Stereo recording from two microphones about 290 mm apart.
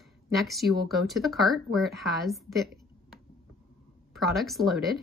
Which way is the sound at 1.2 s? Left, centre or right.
Centre.